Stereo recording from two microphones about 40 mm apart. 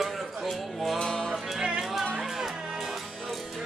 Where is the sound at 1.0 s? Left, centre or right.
Centre.